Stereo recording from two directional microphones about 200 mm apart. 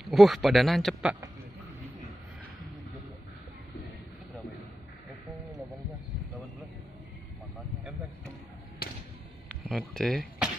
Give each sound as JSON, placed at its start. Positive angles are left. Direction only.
{"t": 0.0, "sound": "speech", "side_deg": 0}
{"t": 8.8, "sound": "basketball bounce", "side_deg": 50}
{"t": 9.7, "sound": "speech", "side_deg": 5}